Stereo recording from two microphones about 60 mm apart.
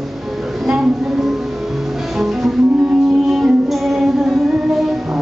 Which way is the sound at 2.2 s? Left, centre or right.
Centre.